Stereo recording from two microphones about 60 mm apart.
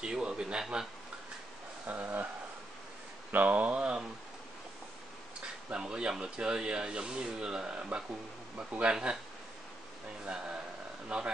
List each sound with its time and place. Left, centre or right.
0.0 s speech: centre
1.9 s speech: right
3.3 s speech: right
5.7 s speech: centre
10.2 s speech: centre